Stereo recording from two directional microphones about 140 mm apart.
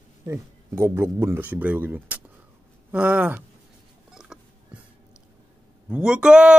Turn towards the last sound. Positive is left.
turn(degrees=-5)  # may be behind; listen again after turning